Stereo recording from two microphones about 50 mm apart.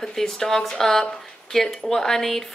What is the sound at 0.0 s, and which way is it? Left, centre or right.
Speech, centre.